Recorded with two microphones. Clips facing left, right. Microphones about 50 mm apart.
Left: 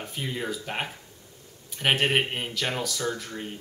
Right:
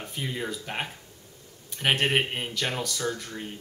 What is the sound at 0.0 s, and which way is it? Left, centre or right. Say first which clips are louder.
Speech: left 1 dB; centre.